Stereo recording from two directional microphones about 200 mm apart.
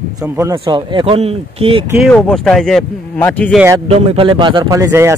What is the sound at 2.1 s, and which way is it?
A man's voice, 5° left (ahead or behind).